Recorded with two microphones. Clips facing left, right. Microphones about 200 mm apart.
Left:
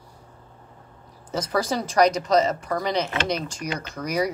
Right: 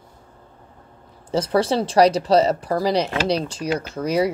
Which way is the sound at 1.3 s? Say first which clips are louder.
Right 5 dB; 30° right (ahead or behind).